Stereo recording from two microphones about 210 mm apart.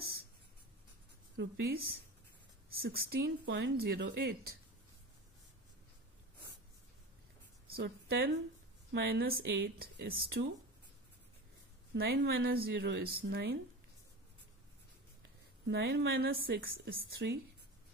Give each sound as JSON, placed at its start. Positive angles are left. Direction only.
{"t": 1.3, "sound": "a woman's voice", "side_deg": -45}
{"t": 7.7, "sound": "a woman's voice", "side_deg": -50}
{"t": 11.9, "sound": "a woman's voice", "side_deg": -50}
{"t": 15.6, "sound": "a woman's voice", "side_deg": -50}